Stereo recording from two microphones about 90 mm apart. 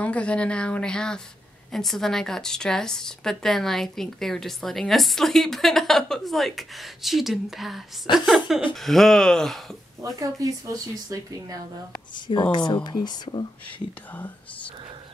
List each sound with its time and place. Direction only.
0.0 s speech: 15° left (ahead or behind)
10.0 s speech: 40° right (ahead or behind)
12.3 s a woman's voice: 55° left (ahead or behind)